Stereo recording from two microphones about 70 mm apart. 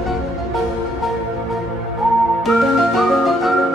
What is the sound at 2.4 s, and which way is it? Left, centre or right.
Music, centre.